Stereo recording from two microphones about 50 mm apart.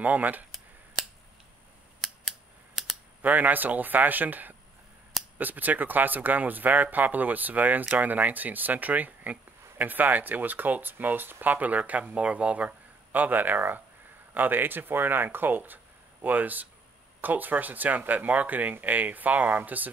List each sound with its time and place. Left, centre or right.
0.0 s speech: right
3.2 s speech: right